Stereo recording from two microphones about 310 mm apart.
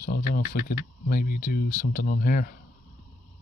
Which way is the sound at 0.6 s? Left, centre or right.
Left.